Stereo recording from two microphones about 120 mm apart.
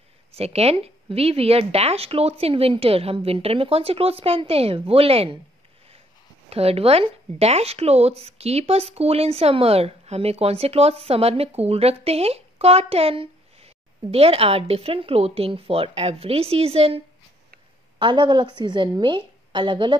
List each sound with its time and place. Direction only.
0.4 s speech: 60° right (ahead or behind)
6.5 s speech: 55° right (ahead or behind)
17.9 s a woman's voice: 40° right (ahead or behind)